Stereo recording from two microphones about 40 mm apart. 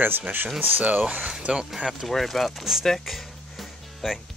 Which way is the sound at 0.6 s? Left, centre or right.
Right.